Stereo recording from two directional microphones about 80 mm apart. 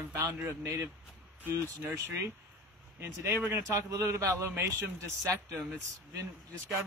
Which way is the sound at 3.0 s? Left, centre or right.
Right.